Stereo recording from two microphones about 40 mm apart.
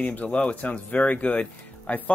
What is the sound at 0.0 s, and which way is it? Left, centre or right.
Speech, left.